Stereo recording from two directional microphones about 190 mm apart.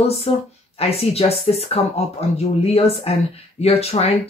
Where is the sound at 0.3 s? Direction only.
30° left (ahead or behind).